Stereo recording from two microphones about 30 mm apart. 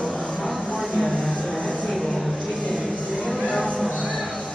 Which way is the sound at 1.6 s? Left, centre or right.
Left.